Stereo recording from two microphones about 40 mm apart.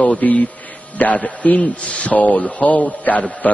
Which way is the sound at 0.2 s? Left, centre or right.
Left.